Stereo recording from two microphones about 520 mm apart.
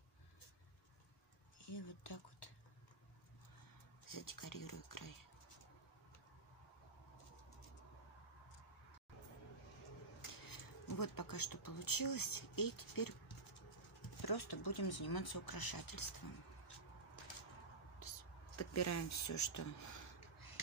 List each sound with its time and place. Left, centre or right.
1.7 s speech: left
4.1 s speech: left
10.4 s speech: left
14.2 s speech: left
18.6 s speech: left